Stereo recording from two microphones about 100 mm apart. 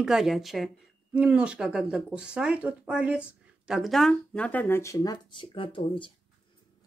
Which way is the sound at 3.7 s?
Centre (ahead or behind).